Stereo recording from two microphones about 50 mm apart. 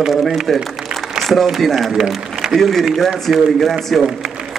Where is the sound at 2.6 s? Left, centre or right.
Centre.